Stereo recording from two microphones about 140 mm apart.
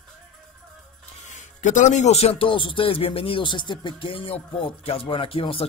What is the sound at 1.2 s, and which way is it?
Speech, 60° left (ahead or behind).